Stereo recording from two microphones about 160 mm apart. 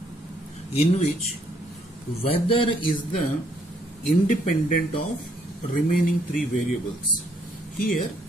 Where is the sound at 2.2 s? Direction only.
35° left (ahead or behind).